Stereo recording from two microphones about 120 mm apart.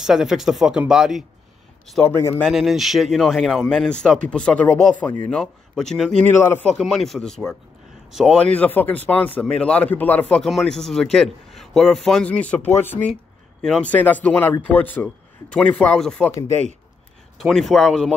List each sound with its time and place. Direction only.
0.0 s speech: 5° right (ahead or behind)
2.0 s speech: 20° left (ahead or behind)
2.4 s speech: centre (ahead or behind); by 5.4 s 15° left (ahead or behind)
5.4 s speech: 5° left (ahead or behind)
6.2 s speech: 15° left (ahead or behind)
6.7 s a man's voice: centre (ahead or behind)
8.4 s speech: 10° left (ahead or behind)
17.4 s speech: centre (ahead or behind)